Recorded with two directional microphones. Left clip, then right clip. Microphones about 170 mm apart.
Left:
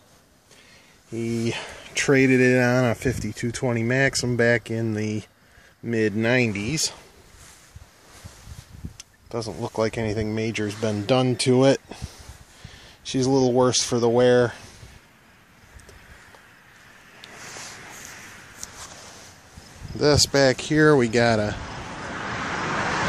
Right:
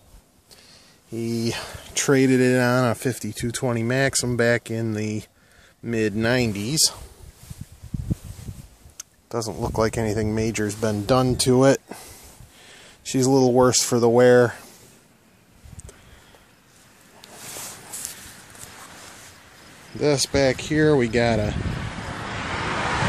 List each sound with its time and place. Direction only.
1.1 s speech: 5° right (ahead or behind)
9.3 s speech: 20° right (ahead or behind)
17.4 s a sound: 45° right (ahead or behind)
20.0 s speech: centre (ahead or behind)
22.3 s vehicle: centre (ahead or behind)